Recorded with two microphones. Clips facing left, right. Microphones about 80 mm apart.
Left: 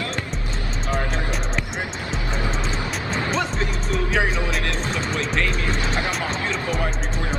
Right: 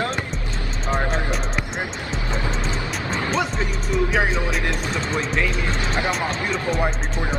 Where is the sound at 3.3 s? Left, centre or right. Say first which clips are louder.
Right 1 dB; centre.